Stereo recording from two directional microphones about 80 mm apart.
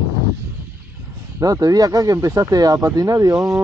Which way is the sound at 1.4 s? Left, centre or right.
Right.